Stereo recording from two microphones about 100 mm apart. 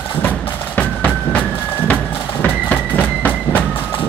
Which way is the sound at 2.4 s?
15° left (ahead or behind).